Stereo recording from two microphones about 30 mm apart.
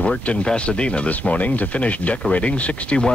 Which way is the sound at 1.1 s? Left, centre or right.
Left.